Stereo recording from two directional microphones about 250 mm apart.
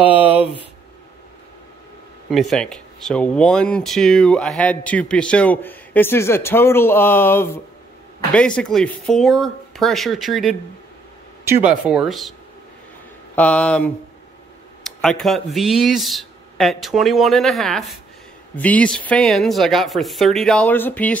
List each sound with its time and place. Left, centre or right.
0.0 s speech: centre
2.3 s speech: centre
13.4 s speech: centre